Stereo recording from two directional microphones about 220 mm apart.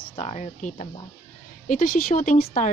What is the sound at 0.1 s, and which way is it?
A woman's voice, 30° left (ahead or behind).